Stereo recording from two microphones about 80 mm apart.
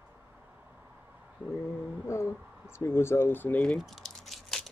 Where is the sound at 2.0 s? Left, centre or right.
Left.